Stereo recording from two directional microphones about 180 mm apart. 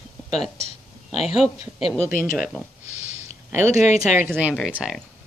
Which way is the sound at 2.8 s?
90° right.